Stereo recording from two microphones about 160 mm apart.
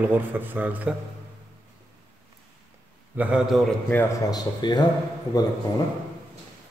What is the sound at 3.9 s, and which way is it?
Speech, 10° left (ahead or behind).